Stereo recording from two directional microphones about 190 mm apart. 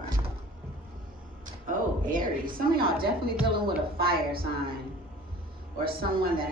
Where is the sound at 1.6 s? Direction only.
45° right (ahead or behind).